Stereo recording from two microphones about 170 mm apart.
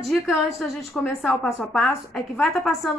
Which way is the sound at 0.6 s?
Centre (ahead or behind).